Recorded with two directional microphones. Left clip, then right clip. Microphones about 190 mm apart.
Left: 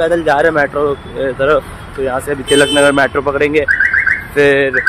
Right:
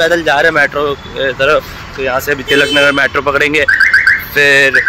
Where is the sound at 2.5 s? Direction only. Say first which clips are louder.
Even; 15° left (ahead or behind).